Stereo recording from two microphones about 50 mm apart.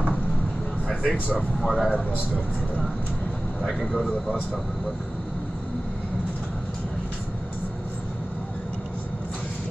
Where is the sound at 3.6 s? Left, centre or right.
Centre.